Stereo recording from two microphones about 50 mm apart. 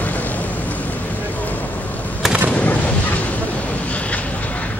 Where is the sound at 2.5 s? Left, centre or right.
Left.